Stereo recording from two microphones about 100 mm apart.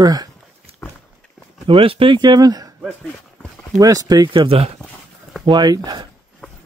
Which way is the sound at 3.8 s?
40° right (ahead or behind).